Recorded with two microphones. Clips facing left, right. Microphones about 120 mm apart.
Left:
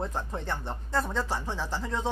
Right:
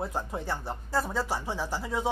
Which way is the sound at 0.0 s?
10° right (ahead or behind).